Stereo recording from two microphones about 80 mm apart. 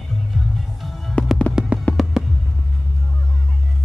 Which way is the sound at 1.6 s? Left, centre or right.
Centre.